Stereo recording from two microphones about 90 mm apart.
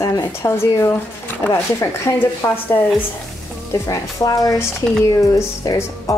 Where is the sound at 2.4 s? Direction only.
20° left (ahead or behind).